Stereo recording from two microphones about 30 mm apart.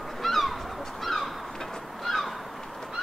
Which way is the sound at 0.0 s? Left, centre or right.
Centre.